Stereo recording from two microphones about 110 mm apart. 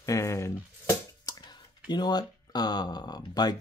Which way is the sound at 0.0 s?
30° left (ahead or behind).